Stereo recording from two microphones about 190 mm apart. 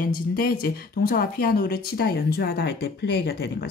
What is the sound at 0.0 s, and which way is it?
Speech, 50° left (ahead or behind).